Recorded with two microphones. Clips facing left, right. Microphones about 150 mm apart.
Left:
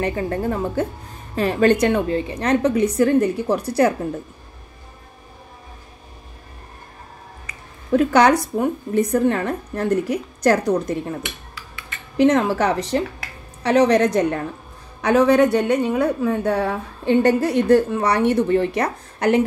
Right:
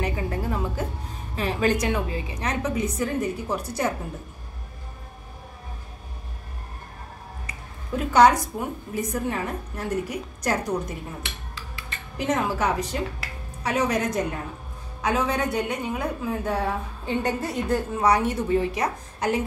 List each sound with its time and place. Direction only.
0.0 s speech: 55° left (ahead or behind)
1.3 s a woman's voice: 65° left (ahead or behind)
7.9 s a woman's voice: 70° left (ahead or behind)
12.2 s a woman's voice: 70° left (ahead or behind)